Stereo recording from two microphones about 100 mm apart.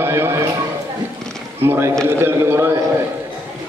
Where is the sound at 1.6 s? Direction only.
20° right (ahead or behind).